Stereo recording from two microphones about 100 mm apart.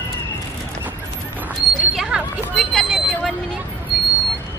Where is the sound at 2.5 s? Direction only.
5° left (ahead or behind).